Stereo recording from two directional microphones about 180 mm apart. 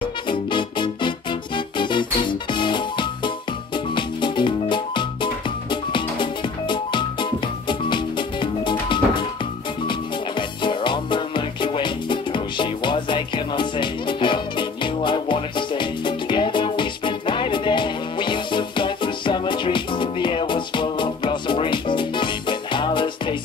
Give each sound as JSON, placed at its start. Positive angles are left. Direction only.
{"t": 0.3, "sound": "music", "side_deg": 25}
{"t": 10.6, "sound": "music", "side_deg": 25}